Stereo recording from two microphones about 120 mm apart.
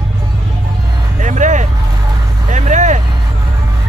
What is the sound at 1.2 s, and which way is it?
Speech, 90° right.